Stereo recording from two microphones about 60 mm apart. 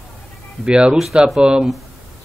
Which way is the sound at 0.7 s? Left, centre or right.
Centre.